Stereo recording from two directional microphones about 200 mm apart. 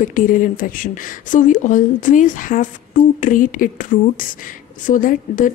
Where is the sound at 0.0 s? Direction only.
40° left (ahead or behind).